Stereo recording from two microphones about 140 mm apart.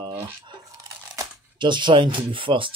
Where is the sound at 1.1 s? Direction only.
35° right (ahead or behind).